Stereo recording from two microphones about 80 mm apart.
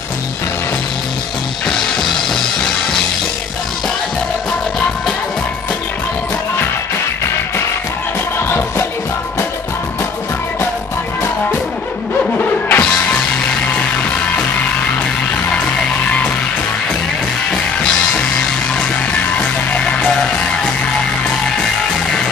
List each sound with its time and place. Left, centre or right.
12.4 s music: left
19.1 s music: centre